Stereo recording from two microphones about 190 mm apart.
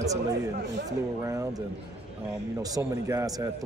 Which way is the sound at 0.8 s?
15° right (ahead or behind).